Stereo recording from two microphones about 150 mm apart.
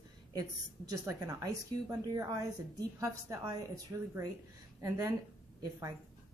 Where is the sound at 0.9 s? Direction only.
25° right (ahead or behind).